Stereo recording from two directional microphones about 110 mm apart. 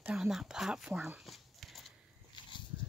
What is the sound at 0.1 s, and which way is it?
Speech, 5° right (ahead or behind).